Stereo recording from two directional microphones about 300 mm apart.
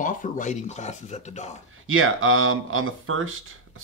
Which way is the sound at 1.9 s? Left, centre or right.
Right.